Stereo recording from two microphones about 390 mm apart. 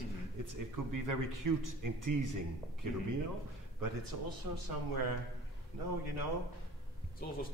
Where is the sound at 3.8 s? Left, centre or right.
Right.